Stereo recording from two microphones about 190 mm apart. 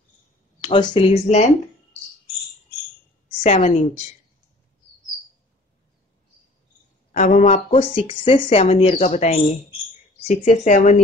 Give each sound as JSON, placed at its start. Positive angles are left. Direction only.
{"t": 0.6, "sound": "speech", "side_deg": 25}
{"t": 3.4, "sound": "speech", "side_deg": 35}
{"t": 7.2, "sound": "speech", "side_deg": 40}